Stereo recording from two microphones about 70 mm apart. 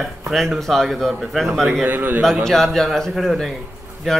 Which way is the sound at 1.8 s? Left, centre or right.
Right.